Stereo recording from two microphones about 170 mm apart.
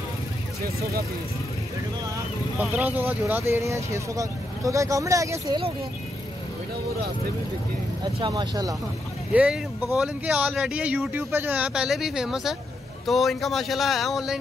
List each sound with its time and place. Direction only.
2.8 s speech: 10° right (ahead or behind)
8.0 s speech: 25° right (ahead or behind)
9.3 s speech: 5° right (ahead or behind)